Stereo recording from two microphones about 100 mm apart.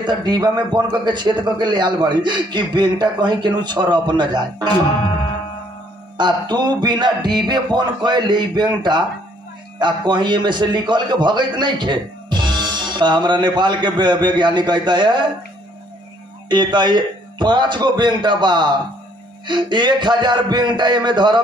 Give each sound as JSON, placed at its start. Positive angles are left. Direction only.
{"t": 0.0, "sound": "a man's voice", "side_deg": -50}
{"t": 6.1, "sound": "a man's voice", "side_deg": -50}
{"t": 16.4, "sound": "a man's voice", "side_deg": -50}